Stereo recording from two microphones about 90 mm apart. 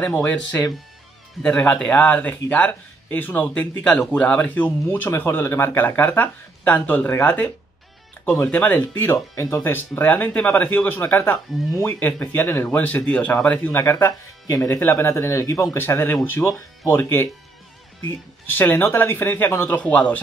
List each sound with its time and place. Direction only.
0.2 s a man's voice: 15° left (ahead or behind)
13.7 s speech: 30° left (ahead or behind)
15.8 s speech: 25° left (ahead or behind)
16.4 s a man's voice: 10° left (ahead or behind)
16.9 s speech: 25° left (ahead or behind)
18.5 s speech: 25° left (ahead or behind)
19.8 s a man's voice: 15° left (ahead or behind)